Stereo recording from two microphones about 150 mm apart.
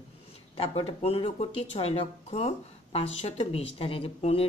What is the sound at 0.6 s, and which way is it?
Speech, 40° left (ahead or behind).